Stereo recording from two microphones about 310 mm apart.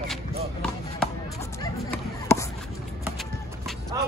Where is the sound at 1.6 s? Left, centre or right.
Centre.